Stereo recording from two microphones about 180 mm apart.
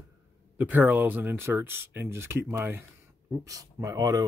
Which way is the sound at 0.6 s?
10° right (ahead or behind).